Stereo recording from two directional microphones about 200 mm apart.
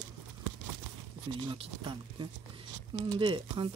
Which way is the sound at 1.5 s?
25° right (ahead or behind).